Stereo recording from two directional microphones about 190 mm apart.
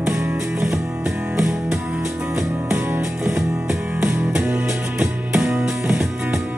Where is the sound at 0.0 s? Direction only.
10° right (ahead or behind).